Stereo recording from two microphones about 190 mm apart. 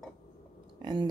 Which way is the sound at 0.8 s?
20° right (ahead or behind).